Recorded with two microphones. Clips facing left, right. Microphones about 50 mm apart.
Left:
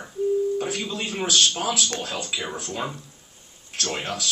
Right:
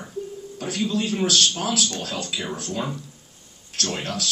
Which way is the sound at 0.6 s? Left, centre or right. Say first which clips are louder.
Right 2 dB; centre.